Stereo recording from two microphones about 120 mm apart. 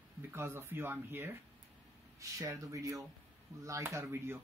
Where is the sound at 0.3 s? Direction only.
20° right (ahead or behind).